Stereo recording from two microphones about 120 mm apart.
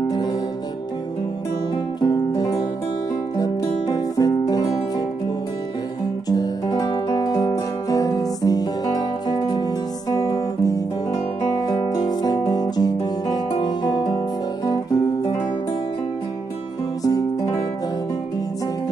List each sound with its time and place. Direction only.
2.0 s music: 35° left (ahead or behind)
6.2 s guitar: 35° left (ahead or behind)
17.0 s music: 30° left (ahead or behind)